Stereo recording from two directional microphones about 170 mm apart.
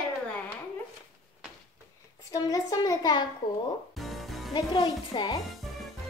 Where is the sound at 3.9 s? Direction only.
Centre (ahead or behind).